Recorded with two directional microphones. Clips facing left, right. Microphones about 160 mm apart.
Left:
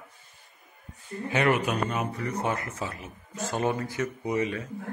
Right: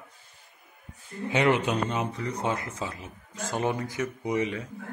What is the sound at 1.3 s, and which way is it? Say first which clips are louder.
Speech: right 1 dB; 20° right (ahead or behind).